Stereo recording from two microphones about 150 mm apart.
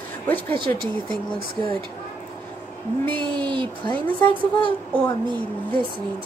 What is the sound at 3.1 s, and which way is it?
Speech, 35° right (ahead or behind).